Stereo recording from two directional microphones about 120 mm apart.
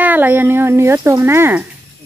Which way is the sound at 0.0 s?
15° right (ahead or behind).